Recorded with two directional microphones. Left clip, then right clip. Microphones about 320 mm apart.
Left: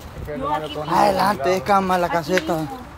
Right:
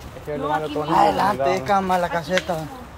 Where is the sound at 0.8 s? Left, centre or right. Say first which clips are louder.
Left 1 dB; left.